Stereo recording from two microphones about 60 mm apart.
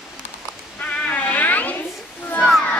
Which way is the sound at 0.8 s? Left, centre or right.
Left.